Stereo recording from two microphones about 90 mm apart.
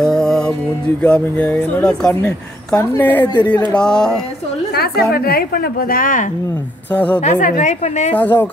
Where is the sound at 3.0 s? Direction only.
20° left (ahead or behind).